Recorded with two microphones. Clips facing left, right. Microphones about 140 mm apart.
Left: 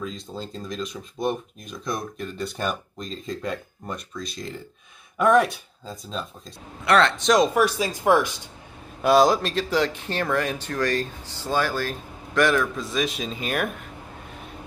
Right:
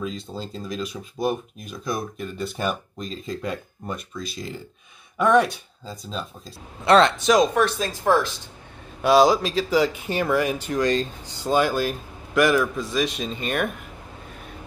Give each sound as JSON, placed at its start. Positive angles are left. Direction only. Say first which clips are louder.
{"t": 0.0, "sound": "speech", "louder": "right 2 dB", "side_deg": 0}
{"t": 6.8, "sound": "a man's voice", "louder": "right 3 dB", "side_deg": -20}
{"t": 7.2, "sound": "speech", "louder": "right 1 dB", "side_deg": -5}
{"t": 7.5, "sound": "speech", "louder": "even", "side_deg": 10}
{"t": 9.0, "sound": "speech", "louder": "right 1 dB", "side_deg": 0}